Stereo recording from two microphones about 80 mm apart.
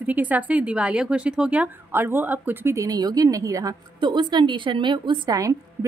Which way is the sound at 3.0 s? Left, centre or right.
Right.